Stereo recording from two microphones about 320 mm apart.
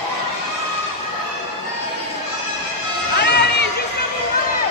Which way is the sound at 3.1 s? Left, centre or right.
Left.